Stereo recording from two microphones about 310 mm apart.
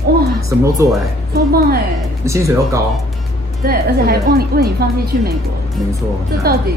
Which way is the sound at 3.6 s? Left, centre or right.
Right.